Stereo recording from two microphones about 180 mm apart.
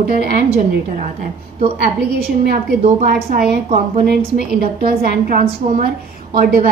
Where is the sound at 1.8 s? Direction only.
60° right (ahead or behind).